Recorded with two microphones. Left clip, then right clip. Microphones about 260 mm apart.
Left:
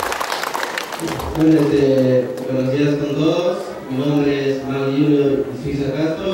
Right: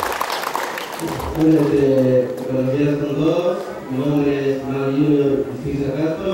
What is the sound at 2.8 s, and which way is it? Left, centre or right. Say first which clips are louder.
Mantra: left 1 dB; centre.